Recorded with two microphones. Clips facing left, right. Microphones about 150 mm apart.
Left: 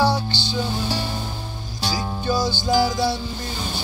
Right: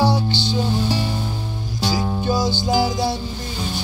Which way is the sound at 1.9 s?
20° right (ahead or behind).